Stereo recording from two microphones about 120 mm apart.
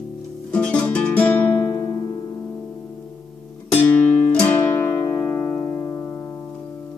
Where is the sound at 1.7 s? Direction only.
30° left (ahead or behind).